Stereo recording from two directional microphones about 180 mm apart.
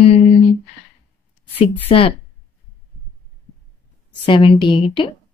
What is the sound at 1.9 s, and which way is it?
Speech, 30° left (ahead or behind).